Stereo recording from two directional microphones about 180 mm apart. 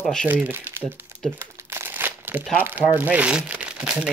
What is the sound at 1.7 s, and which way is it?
Crumpling, 10° right (ahead or behind).